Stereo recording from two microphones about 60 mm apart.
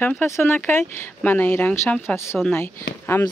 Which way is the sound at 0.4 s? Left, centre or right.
Left.